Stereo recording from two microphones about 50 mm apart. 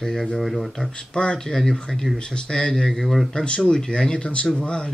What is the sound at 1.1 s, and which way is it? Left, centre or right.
Speech, centre.